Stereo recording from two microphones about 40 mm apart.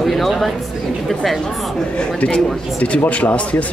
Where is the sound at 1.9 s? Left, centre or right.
Left.